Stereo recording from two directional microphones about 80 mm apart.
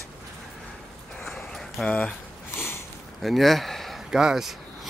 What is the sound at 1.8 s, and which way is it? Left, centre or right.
Speech, centre.